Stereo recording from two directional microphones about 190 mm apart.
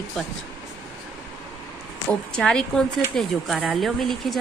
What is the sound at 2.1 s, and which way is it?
A woman's voice, 5° left (ahead or behind).